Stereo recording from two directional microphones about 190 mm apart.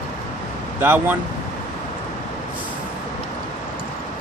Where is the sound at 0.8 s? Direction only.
10° right (ahead or behind).